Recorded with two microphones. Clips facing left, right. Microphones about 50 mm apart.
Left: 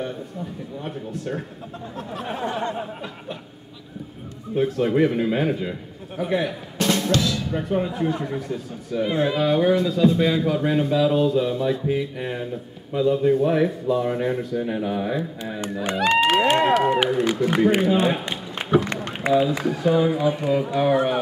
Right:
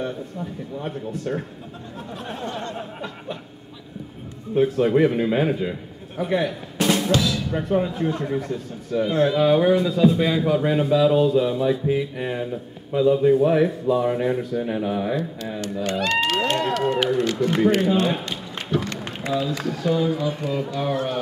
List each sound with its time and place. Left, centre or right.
0.7 s a man's voice: centre
2.2 s a sound: centre
2.7 s a sound: centre
4.6 s a man's voice: centre
6.8 s speech: centre
8.3 s a man's voice: centre
9.0 s speech: centre
9.3 s a man's voice: centre
15.6 s speech: left
17.1 s a sound: centre
17.9 s run: centre
19.2 s speech: left